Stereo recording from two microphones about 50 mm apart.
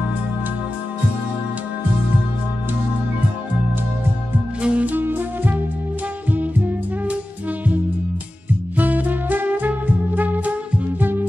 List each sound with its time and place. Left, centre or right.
4.6 s music: right
4.8 s music: right
8.7 s music: right